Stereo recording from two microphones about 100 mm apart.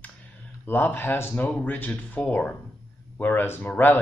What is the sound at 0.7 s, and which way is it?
Speech, 20° left (ahead or behind).